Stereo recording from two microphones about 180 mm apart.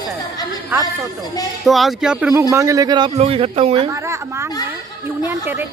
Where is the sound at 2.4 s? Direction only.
20° right (ahead or behind).